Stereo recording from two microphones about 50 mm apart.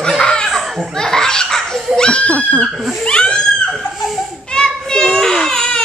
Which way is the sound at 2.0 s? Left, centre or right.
Left.